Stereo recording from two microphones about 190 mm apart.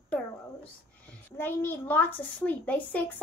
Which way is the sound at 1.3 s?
10° left (ahead or behind).